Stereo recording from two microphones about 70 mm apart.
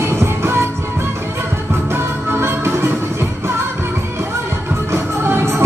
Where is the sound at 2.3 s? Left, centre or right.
Right.